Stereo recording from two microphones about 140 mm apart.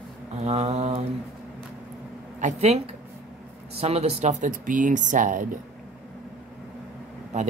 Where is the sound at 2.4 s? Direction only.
55° right (ahead or behind).